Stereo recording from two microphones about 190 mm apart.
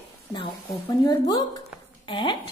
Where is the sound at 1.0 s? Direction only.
20° left (ahead or behind).